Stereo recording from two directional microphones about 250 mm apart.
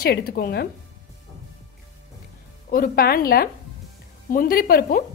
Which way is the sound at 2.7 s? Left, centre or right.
Left.